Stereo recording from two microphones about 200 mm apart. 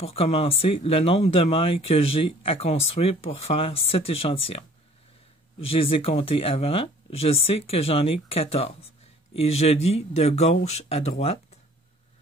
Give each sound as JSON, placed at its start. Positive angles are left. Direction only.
{"t": 0.0, "sound": "speech", "side_deg": 30}
{"t": 5.7, "sound": "speech", "side_deg": 30}